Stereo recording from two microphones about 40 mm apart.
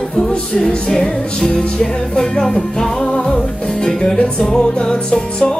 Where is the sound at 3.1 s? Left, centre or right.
Left.